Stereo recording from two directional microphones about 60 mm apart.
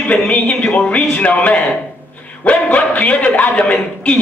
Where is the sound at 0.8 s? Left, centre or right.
Left.